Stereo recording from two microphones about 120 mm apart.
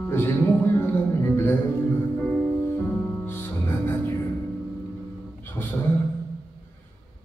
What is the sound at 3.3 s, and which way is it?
Music, 20° left (ahead or behind).